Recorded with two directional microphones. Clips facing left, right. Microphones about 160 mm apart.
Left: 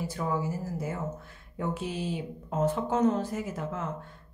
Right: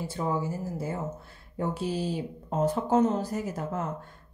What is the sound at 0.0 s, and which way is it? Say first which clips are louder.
Speech: right 1 dB; 25° right (ahead or behind).